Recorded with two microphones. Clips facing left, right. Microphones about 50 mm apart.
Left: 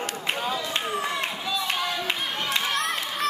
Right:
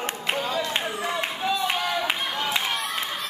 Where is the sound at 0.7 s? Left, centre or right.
Centre.